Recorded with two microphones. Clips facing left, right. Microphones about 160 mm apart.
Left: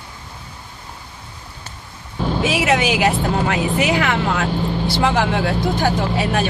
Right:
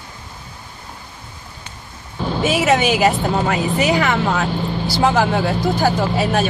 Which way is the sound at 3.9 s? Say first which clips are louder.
Right 1 dB; 40° right (ahead or behind).